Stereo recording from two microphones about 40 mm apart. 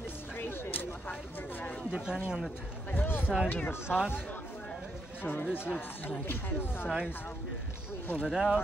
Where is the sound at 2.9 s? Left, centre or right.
Left.